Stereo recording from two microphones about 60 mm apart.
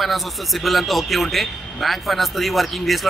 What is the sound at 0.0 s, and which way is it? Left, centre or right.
A man's voice, centre.